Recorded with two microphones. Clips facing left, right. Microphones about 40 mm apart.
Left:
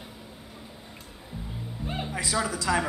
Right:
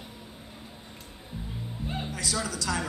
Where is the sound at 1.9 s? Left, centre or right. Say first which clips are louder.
Left 2 dB; centre.